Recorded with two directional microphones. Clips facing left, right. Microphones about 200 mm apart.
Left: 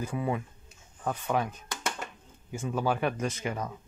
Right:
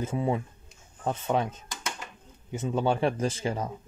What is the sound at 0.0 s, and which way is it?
Speech, 25° right (ahead or behind).